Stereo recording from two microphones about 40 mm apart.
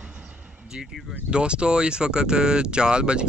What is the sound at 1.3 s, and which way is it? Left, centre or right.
Speech, right.